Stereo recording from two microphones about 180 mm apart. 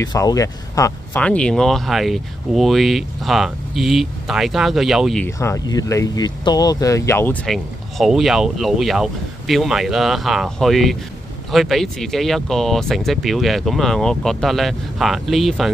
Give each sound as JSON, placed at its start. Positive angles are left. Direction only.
{"t": 0.0, "sound": "speech", "side_deg": 20}
{"t": 1.2, "sound": "speech", "side_deg": 5}
{"t": 5.2, "sound": "speech", "side_deg": 15}
{"t": 7.4, "sound": "speech", "side_deg": 0}